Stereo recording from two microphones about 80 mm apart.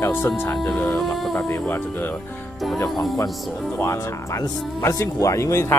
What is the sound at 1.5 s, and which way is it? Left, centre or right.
Speech, left.